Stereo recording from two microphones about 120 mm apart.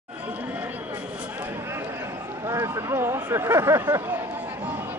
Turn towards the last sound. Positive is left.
turn(degrees=-20)  # may be behind; listen again after turning